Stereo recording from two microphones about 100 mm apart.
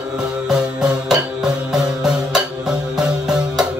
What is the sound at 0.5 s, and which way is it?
Music, 5° right (ahead or behind).